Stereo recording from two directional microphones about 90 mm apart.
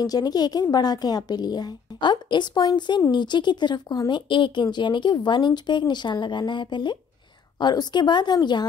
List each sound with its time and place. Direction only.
0.0 s a woman's voice: 45° left (ahead or behind)